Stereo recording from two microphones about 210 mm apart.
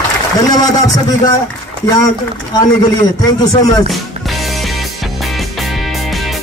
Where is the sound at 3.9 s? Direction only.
Centre (ahead or behind).